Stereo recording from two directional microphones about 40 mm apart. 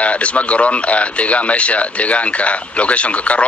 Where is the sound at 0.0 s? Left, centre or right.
Left.